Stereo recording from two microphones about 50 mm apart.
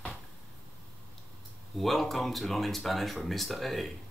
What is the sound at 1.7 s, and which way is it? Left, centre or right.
A man's voice, centre.